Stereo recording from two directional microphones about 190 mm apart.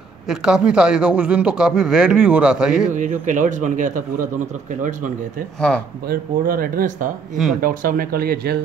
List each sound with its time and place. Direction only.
0.3 s speech: 5° right (ahead or behind)
2.9 s a man's voice: 40° right (ahead or behind)
6.0 s a man's voice: 50° right (ahead or behind)